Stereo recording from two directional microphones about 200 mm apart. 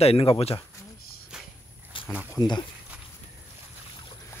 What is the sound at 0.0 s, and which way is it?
Speech, 30° left (ahead or behind).